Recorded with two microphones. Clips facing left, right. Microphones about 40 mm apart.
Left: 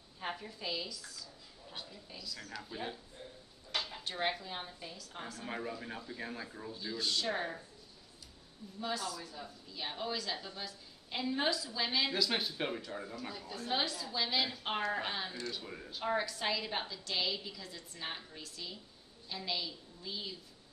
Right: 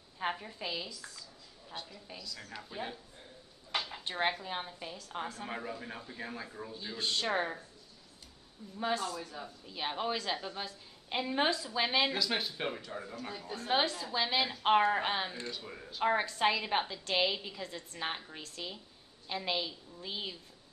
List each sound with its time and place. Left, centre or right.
0.2 s a woman's voice: right
1.7 s a woman's voice: centre
4.0 s a woman's voice: centre
5.5 s speech: centre
7.0 s a woman's voice: right
8.7 s a woman's voice: right
12.1 s speech: centre
13.5 s a woman's voice: right
15.5 s speech: centre
16.0 s a woman's voice: right